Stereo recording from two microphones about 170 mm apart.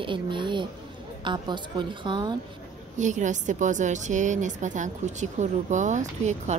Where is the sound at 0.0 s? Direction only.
30° right (ahead or behind).